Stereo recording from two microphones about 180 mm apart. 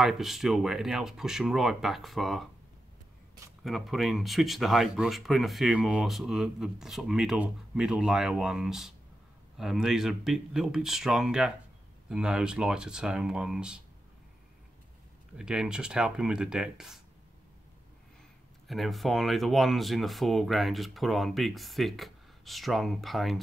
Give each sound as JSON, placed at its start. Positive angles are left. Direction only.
{"t": 0.0, "sound": "speech", "side_deg": 0}
{"t": 3.6, "sound": "speech", "side_deg": 0}
{"t": 15.3, "sound": "speech", "side_deg": -5}
{"t": 18.7, "sound": "speech", "side_deg": 0}